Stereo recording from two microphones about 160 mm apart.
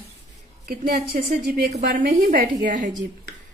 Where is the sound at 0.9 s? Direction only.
75° right (ahead or behind).